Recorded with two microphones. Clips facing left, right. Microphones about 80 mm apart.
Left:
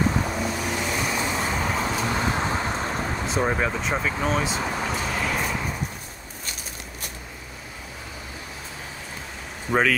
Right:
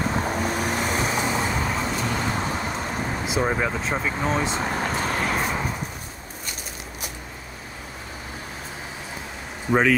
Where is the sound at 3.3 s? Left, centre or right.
Centre.